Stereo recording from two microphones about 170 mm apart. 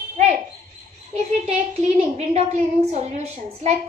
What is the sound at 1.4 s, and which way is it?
A woman's voice, 40° right (ahead or behind).